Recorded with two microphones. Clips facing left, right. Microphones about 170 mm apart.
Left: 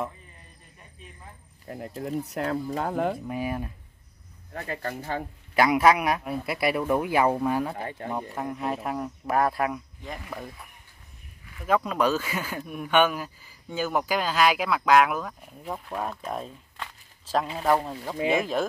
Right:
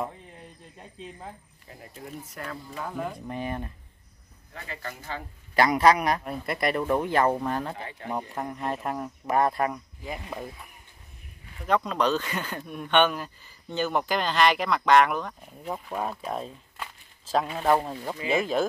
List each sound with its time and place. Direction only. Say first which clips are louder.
1.7 s speech: left 10 dB; 50° left (ahead or behind)
2.2 s speech: left 10 dB; 70° left (ahead or behind)
3.3 s speech: left 2 dB; 5° left (ahead or behind)
4.6 s speech: left 6 dB; 40° left (ahead or behind)
5.5 s speech: even; 5° left (ahead or behind)
7.7 s speech: left 4 dB; 50° left (ahead or behind)
8.4 s speech: left 1 dB; centre (ahead or behind)
11.6 s speech: left 1 dB; 5° left (ahead or behind)